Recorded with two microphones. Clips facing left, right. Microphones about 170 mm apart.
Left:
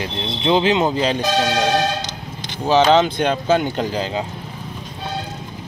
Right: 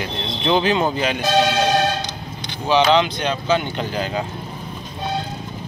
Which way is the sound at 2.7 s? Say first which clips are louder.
Left 2 dB; 45° left (ahead or behind).